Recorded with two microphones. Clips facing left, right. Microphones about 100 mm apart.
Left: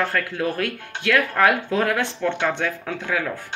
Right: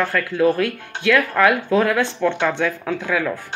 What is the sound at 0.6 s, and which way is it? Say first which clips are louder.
Speech: right 4 dB; 45° left (ahead or behind).